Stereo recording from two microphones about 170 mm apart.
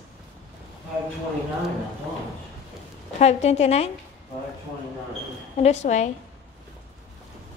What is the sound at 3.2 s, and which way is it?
Speech, 40° left (ahead or behind).